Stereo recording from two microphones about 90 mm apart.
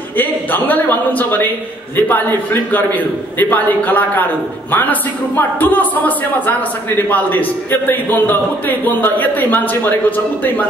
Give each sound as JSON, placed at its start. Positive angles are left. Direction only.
{"t": 0.2, "sound": "a man's voice", "side_deg": 20}